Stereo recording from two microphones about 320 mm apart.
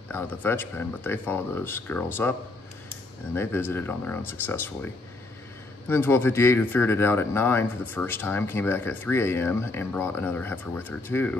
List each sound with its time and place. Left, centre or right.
0.1 s speech: centre
3.3 s speech: centre